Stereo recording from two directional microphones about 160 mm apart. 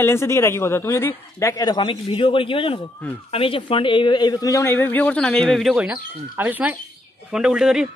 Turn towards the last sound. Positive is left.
turn(degrees=-5)  # may be behind; listen again after turning